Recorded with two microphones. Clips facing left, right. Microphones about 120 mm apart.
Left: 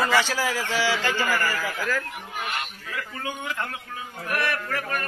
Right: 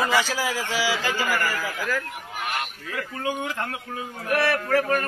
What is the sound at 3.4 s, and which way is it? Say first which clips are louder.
Speech: right 1 dB; 40° right (ahead or behind).